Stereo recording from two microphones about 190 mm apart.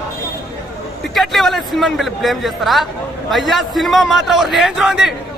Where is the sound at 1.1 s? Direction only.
Centre (ahead or behind).